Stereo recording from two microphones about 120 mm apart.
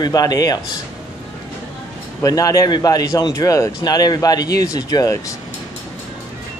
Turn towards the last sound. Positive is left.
turn(degrees=30)  # may be behind; listen again after turning